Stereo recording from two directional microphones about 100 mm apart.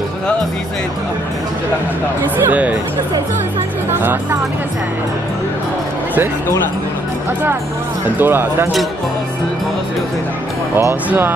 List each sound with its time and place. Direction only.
2.3 s speech: 15° right (ahead or behind)
4.0 s speech: 20° right (ahead or behind)
8.2 s speech: 20° right (ahead or behind)
11.1 s speech: 20° right (ahead or behind)